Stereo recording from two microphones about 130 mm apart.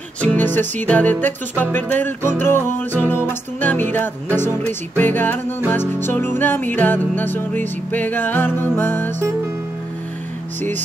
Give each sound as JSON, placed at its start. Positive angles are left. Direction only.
{"t": 0.2, "sound": "music", "side_deg": 10}